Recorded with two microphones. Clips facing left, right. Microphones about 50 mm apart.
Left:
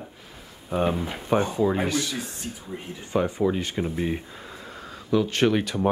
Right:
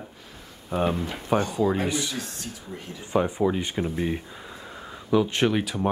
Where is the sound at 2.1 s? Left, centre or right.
Centre.